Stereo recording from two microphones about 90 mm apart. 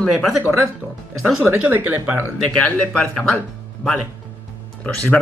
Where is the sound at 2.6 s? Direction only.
10° left (ahead or behind).